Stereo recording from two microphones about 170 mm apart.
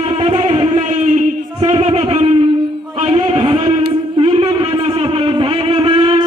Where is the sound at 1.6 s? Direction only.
35° right (ahead or behind).